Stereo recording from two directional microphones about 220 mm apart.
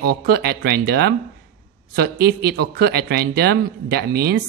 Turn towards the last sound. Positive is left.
turn(degrees=-45)  # may be behind; listen again after turning